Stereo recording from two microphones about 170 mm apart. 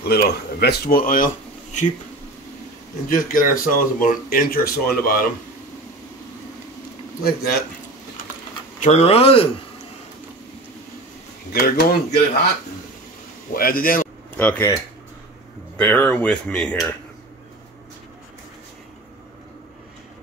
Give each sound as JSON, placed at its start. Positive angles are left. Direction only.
{"t": 0.0, "sound": "speech", "side_deg": 70}
{"t": 3.1, "sound": "speech", "side_deg": 55}
{"t": 8.8, "sound": "speech", "side_deg": 40}
{"t": 11.5, "sound": "speech", "side_deg": 60}
{"t": 13.5, "sound": "speech", "side_deg": 60}
{"t": 14.3, "sound": "speech", "side_deg": 10}
{"t": 15.8, "sound": "speech", "side_deg": 10}